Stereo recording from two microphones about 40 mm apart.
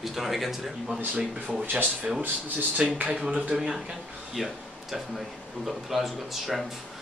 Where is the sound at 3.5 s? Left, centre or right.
Centre.